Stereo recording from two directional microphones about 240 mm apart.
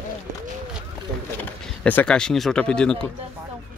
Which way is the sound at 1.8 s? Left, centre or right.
Centre.